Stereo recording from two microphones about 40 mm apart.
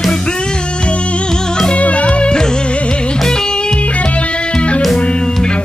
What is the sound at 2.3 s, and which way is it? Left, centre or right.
Music, centre.